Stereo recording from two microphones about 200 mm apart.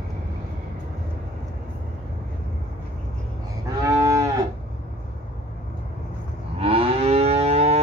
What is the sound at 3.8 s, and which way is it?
Moo, 15° right (ahead or behind).